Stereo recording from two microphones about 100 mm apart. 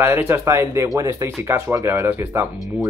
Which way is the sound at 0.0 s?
25° right (ahead or behind).